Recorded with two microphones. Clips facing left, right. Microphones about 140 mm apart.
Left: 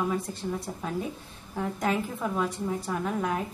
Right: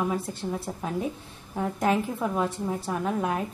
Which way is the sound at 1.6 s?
10° right (ahead or behind).